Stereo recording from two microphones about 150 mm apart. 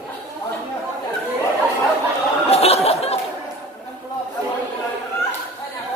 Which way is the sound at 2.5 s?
45° left (ahead or behind).